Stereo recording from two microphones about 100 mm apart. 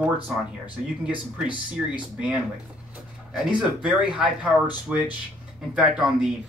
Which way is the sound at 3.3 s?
5° right (ahead or behind).